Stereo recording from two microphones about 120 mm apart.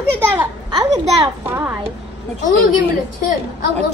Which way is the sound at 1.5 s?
15° right (ahead or behind).